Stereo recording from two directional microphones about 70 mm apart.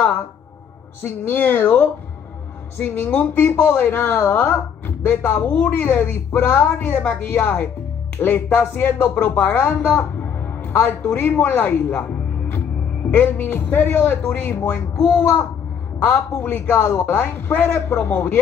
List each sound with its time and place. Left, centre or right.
1.0 s speech: left